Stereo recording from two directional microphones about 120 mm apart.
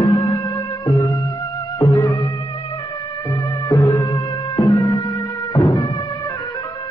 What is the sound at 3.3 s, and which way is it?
Music, 25° left (ahead or behind).